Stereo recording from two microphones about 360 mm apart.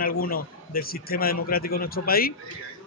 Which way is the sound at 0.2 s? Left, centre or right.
Left.